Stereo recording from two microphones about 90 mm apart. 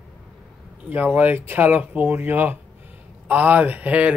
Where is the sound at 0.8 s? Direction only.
15° right (ahead or behind).